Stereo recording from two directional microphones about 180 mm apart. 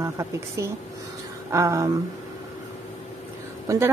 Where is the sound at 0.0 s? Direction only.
15° right (ahead or behind).